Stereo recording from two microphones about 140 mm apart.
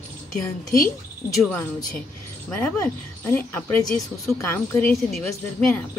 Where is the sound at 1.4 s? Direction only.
10° left (ahead or behind).